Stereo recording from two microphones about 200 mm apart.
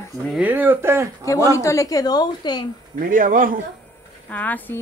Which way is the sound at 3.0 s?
45° right (ahead or behind).